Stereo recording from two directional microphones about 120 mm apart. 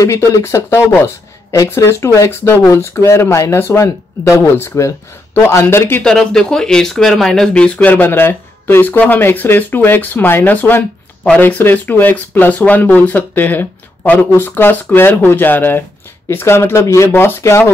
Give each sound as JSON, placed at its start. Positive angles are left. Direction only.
{"t": 0.0, "sound": "speech", "side_deg": 25}
{"t": 6.0, "sound": "speech", "side_deg": 5}